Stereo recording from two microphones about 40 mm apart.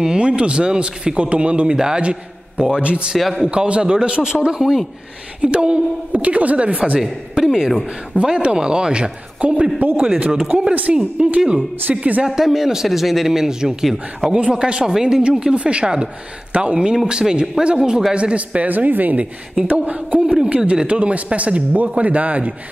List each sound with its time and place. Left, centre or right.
0.0 s speech: right
3.2 s a man's voice: centre
3.4 s speech: right
5.4 s a man's voice: right
7.0 s speech: centre
8.2 s a man's voice: right
10.4 s speech: centre
11.1 s a man's voice: right
11.9 s a man's voice: centre; by 16.8 s right
16.8 s speech: centre
18.7 s a woman's voice: right